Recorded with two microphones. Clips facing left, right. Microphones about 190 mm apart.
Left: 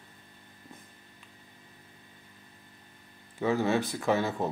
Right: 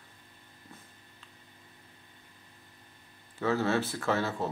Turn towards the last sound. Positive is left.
turn(degrees=15)  # may be behind; listen again after turning